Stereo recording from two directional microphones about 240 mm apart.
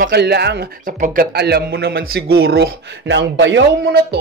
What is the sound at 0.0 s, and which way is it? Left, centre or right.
A man's voice, right.